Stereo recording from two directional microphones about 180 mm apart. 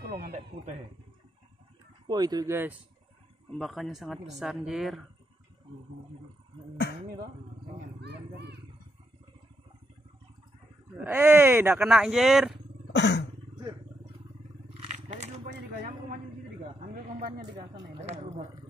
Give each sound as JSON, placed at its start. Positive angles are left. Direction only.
{"t": 0.2, "sound": "speech", "side_deg": -40}
{"t": 2.0, "sound": "speech", "side_deg": -20}
{"t": 3.4, "sound": "speech", "side_deg": 0}
{"t": 8.0, "sound": "vehicle", "side_deg": -70}
{"t": 11.0, "sound": "speech", "side_deg": -5}
{"t": 12.9, "sound": "roaring cats", "side_deg": 75}
{"t": 14.7, "sound": "biting", "side_deg": -35}
{"t": 16.8, "sound": "speech", "side_deg": -50}
{"t": 17.3, "sound": "speech", "side_deg": -30}